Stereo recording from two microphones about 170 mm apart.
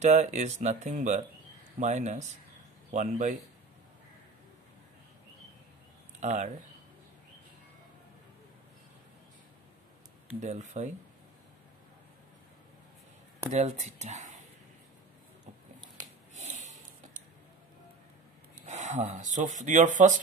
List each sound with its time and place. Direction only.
0.0 s speech: 45° right (ahead or behind)
6.2 s speech: 45° right (ahead or behind)
10.4 s speech: 45° right (ahead or behind)
13.5 s speech: 40° right (ahead or behind)
16.3 s sniff: 40° right (ahead or behind)
18.7 s speech: 45° right (ahead or behind)